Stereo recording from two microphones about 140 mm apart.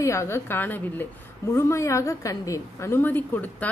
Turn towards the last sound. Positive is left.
turn(degrees=10)  # may be behind; listen again after turning